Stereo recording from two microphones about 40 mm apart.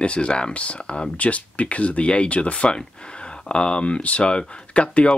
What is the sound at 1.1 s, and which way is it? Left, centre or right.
Speech, left.